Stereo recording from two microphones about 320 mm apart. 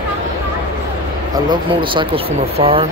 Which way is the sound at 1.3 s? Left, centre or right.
Centre.